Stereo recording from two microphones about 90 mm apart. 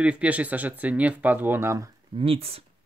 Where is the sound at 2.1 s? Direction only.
90° right.